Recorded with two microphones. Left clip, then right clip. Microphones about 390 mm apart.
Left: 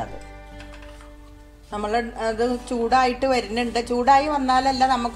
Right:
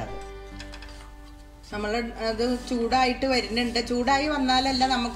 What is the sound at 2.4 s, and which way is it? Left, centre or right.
Speech, centre.